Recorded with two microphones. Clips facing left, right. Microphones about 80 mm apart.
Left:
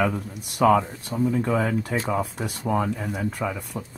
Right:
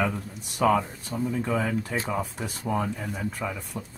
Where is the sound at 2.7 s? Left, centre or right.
Centre.